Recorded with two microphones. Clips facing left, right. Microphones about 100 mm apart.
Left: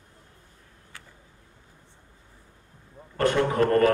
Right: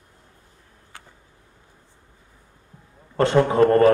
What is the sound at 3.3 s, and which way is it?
Speech, 25° right (ahead or behind).